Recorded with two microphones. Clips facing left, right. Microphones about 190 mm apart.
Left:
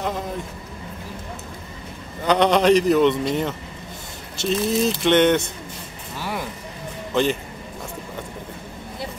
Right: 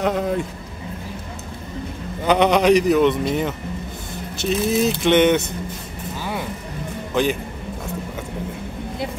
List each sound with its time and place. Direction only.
0.0 s speech: 70° right (ahead or behind)
2.2 s speech: 10° right (ahead or behind)
6.1 s vehicle: centre (ahead or behind)